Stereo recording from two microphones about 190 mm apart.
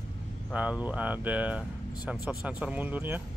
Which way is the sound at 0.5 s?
5° right (ahead or behind).